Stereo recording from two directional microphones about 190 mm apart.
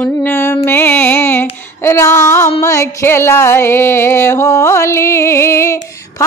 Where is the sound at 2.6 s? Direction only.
15° left (ahead or behind).